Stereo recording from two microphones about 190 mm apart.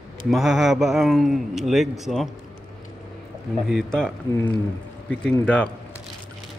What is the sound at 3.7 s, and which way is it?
A man's voice, 5° left (ahead or behind).